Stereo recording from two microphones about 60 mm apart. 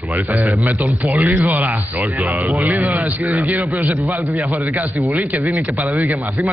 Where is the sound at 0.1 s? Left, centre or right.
Right.